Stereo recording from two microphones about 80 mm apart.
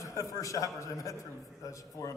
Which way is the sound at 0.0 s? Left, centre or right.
Left.